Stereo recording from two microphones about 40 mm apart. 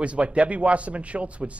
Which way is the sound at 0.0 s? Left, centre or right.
Right.